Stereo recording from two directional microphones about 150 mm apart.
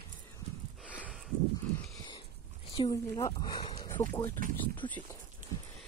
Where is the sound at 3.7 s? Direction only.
20° left (ahead or behind).